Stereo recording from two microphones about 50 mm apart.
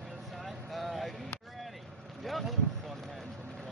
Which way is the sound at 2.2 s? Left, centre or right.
Centre.